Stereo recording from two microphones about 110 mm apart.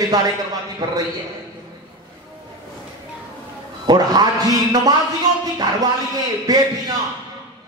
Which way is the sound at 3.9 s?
35° right (ahead or behind).